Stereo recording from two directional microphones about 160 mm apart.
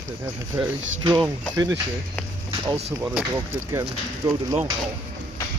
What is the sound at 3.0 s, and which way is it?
Speech, 10° right (ahead or behind).